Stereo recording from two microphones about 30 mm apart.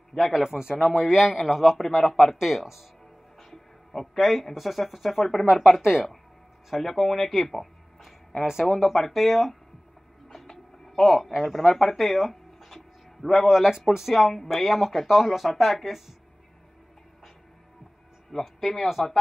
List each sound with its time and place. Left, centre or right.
0.3 s speech: centre
0.7 s speech: centre
2.0 s speech: centre
2.3 s speech: centre
3.3 s music: centre
4.2 s speech: centre
5.4 s speech: centre
6.8 s speech: centre
8.6 s speech: centre
10.3 s music: centre
11.4 s speech: centre
14.2 s speech: centre
14.5 s speech: centre
18.3 s speech: centre